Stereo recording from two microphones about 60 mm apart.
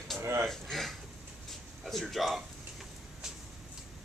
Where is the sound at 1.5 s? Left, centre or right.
Centre.